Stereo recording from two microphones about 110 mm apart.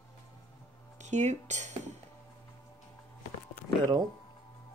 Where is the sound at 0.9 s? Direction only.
90° right.